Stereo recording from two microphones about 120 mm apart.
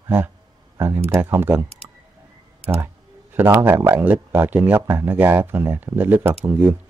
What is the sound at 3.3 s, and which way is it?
Speech, 15° right (ahead or behind).